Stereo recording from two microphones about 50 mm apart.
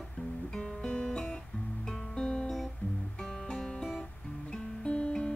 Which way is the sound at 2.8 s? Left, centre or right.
Left.